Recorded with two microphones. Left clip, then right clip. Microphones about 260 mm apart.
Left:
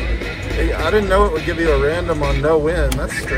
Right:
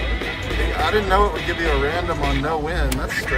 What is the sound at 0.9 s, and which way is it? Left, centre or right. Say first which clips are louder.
Speech: left 3 dB; centre.